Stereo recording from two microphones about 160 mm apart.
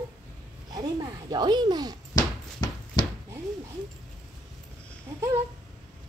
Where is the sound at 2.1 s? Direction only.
25° left (ahead or behind).